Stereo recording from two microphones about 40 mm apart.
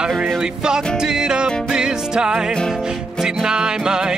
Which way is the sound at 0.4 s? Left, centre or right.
Centre.